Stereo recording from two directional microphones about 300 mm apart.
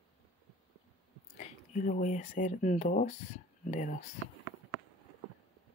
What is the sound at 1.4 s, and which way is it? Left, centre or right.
Speech, left.